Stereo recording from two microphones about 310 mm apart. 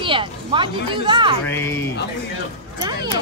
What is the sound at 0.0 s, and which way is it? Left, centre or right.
Speech, centre.